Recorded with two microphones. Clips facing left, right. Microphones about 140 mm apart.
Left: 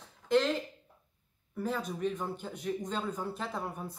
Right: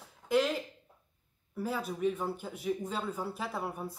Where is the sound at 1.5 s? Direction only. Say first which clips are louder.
Even; 5° right (ahead or behind).